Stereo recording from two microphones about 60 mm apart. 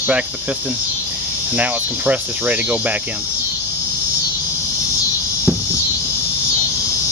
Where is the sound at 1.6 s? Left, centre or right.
Right.